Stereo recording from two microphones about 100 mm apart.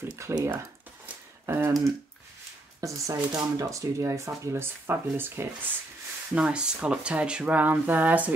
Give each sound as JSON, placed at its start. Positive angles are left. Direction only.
{"t": 0.0, "sound": "speech", "side_deg": -25}
{"t": 1.4, "sound": "speech", "side_deg": -25}
{"t": 2.8, "sound": "speech", "side_deg": -35}
{"t": 6.3, "sound": "speech", "side_deg": -10}